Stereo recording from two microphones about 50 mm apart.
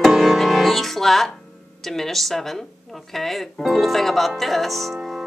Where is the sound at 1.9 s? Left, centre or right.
Centre.